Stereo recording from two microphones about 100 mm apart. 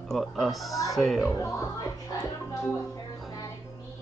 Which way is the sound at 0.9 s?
Centre (ahead or behind).